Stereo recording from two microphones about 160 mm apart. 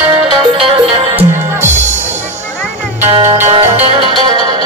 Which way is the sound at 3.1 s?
40° right (ahead or behind).